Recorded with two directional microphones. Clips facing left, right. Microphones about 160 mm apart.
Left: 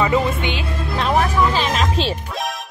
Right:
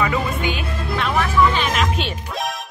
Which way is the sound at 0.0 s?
25° left (ahead or behind).